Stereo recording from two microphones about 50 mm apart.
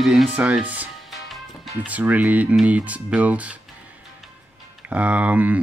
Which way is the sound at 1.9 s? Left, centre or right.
Right.